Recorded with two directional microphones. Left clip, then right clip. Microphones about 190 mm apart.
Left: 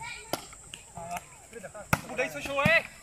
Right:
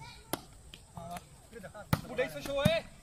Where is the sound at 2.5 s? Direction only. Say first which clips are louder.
Left 7 dB; 45° right (ahead or behind).